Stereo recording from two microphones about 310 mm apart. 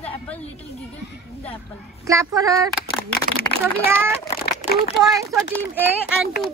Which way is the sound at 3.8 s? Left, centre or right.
Centre.